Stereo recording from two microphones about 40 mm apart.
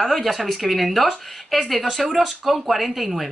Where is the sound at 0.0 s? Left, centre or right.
Centre.